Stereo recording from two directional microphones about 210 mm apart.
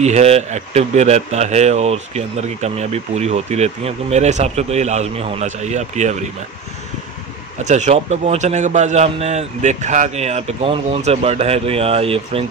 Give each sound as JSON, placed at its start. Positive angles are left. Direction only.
{"t": 0.0, "sound": "speech", "side_deg": -30}
{"t": 7.6, "sound": "speech", "side_deg": -35}